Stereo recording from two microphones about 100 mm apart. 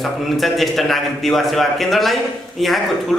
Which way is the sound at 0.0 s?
Centre (ahead or behind).